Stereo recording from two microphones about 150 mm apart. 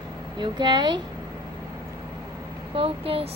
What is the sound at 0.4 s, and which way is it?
Speech, 30° right (ahead or behind).